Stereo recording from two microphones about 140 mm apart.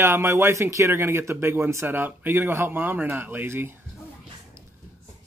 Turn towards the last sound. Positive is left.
turn(degrees=-15)  # may be behind; listen again after turning